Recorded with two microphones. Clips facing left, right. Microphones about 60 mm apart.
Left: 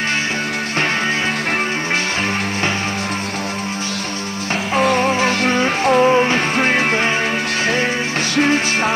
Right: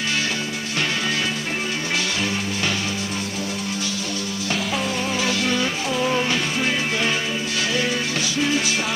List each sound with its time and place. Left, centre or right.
4.7 s music: left
5.1 s music: left
6.5 s music: left